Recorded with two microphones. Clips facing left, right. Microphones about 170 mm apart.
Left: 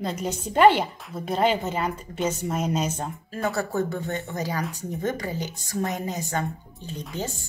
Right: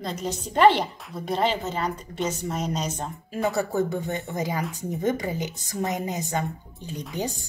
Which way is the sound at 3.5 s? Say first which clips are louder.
Right 2 dB; 15° right (ahead or behind).